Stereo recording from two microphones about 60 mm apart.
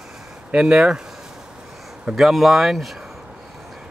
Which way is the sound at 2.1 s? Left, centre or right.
Centre.